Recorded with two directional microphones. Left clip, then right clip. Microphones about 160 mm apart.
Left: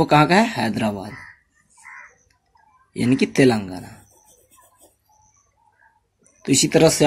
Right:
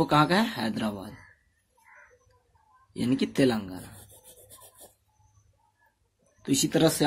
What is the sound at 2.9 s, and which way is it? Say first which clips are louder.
Speech: left 8 dB; 20° left (ahead or behind).